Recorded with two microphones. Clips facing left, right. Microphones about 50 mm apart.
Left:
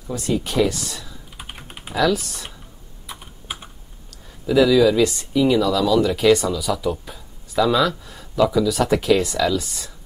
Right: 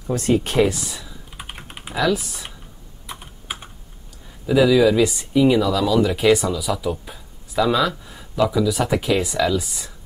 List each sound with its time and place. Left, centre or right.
0.0 s speech: right
0.7 s typing: centre
3.1 s computer keyboard: centre
4.5 s speech: centre